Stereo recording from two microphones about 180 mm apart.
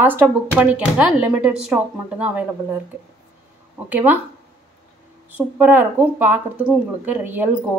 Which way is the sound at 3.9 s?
10° right (ahead or behind).